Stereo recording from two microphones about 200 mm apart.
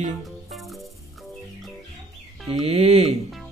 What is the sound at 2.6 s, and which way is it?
Music, 30° right (ahead or behind).